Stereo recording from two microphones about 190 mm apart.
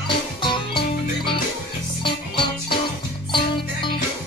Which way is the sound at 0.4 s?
25° left (ahead or behind).